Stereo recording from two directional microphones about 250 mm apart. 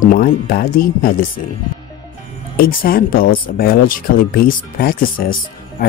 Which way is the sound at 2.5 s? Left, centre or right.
Left.